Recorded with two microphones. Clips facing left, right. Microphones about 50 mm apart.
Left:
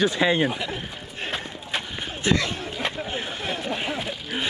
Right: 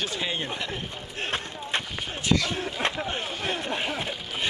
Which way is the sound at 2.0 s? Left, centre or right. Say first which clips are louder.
Left 3 dB; left.